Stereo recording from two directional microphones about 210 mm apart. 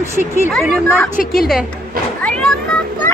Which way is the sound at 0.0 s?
10° right (ahead or behind).